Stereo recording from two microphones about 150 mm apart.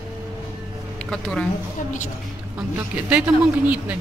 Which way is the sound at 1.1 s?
5° left (ahead or behind).